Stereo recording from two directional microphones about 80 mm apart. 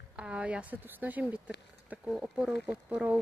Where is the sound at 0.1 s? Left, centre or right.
Centre.